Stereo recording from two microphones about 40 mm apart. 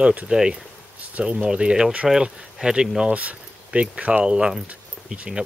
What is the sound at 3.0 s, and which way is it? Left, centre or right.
Speech, right.